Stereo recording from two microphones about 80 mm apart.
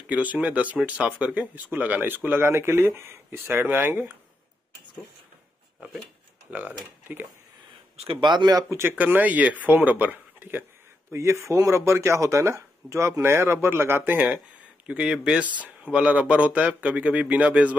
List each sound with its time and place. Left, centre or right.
0.1 s speech: centre
6.5 s speech: right
8.2 s speech: right
8.6 s speech: right
8.9 s speech: right
11.1 s speech: right; by 17.6 s centre